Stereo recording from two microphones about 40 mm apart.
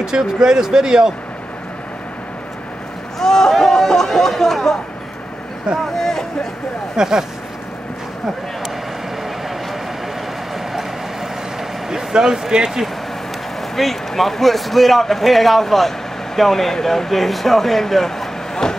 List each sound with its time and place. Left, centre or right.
0.0 s speech: centre
3.2 s a sound: centre
5.9 s speech: centre
7.0 s speech: centre
10.5 s vehicle: centre
11.9 s speech: centre
13.7 s a man's voice: centre